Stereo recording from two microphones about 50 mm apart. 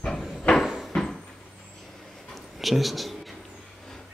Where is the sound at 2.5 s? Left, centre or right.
Centre.